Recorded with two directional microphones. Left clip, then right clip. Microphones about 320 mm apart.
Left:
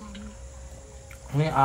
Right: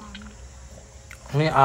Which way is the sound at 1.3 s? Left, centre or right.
Right.